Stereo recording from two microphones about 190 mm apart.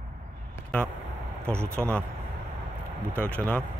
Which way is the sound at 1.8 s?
5° left (ahead or behind).